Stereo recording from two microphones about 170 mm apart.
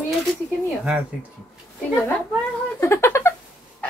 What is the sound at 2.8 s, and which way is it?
Speech, 15° left (ahead or behind).